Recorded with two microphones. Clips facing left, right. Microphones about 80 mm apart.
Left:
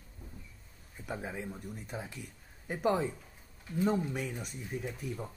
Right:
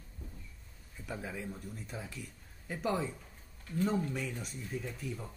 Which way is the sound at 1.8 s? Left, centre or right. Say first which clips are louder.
Left 2 dB; left.